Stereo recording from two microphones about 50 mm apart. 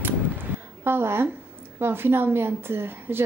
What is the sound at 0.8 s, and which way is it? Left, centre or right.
A woman's voice, right.